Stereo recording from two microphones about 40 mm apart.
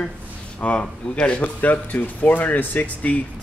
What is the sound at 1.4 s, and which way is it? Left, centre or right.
Speech, left.